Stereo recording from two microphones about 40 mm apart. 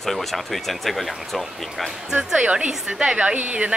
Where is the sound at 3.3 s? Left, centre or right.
Right.